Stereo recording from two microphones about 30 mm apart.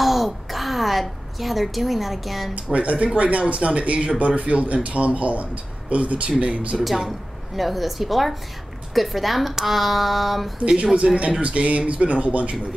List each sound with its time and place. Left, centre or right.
0.0 s a sound: centre
2.5 s speech: right
6.8 s a woman's voice: centre
11.0 s speech: right
11.3 s speech: right